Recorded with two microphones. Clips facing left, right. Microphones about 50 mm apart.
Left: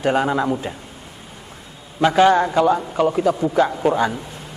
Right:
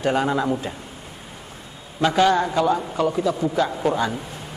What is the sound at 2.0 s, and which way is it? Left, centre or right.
A man's voice, centre.